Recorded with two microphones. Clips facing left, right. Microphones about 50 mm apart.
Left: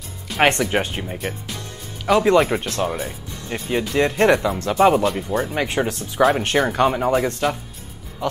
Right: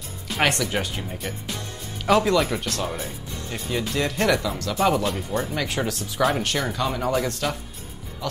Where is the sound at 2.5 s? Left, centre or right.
Left.